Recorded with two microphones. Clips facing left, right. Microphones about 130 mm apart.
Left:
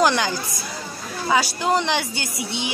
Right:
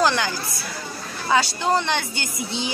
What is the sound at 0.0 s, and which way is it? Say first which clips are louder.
Speech: left 2 dB; 15° left (ahead or behind).